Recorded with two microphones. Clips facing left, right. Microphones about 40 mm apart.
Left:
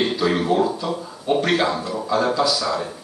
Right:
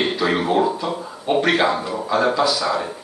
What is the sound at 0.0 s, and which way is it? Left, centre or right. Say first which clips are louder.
Speech: even; centre.